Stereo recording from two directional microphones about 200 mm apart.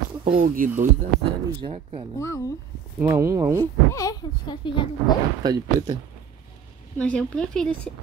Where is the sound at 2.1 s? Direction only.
15° left (ahead or behind).